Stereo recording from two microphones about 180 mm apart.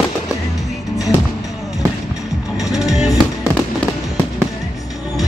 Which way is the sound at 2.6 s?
Centre (ahead or behind).